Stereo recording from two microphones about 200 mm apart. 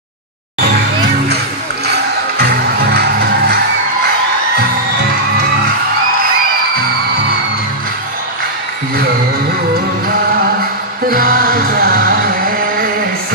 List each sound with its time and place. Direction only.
1.9 s music: 55° right (ahead or behind)
11.1 s music: 45° right (ahead or behind)